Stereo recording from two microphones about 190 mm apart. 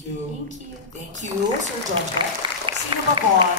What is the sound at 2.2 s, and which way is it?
Speech, 25° right (ahead or behind).